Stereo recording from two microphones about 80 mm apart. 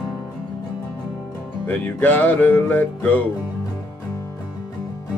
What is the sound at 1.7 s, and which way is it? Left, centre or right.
Music, left.